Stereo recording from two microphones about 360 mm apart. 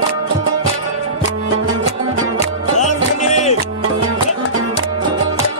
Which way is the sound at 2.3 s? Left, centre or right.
Centre.